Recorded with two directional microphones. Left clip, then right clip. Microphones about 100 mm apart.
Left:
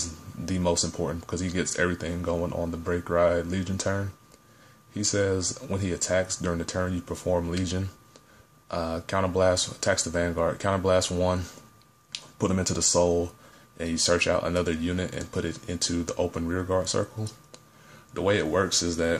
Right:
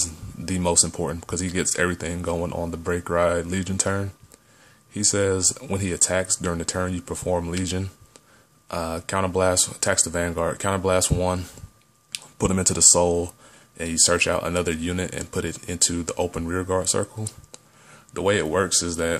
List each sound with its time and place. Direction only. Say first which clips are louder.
0.0 s speech: right 5 dB; 40° right (ahead or behind)
12.1 s speech: right 3 dB; 45° right (ahead or behind)